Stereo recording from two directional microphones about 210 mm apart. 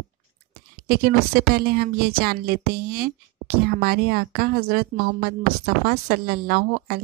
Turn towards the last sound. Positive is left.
turn(degrees=-45)  # may be behind; listen again after turning